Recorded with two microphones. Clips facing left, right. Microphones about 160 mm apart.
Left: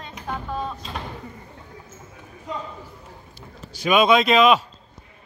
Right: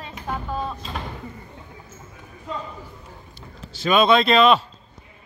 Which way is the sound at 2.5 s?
15° left (ahead or behind).